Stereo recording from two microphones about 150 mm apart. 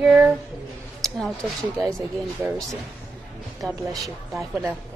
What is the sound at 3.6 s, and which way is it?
Speech, centre (ahead or behind).